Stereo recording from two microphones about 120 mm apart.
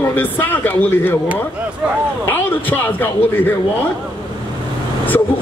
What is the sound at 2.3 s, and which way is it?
A man's voice, 15° left (ahead or behind).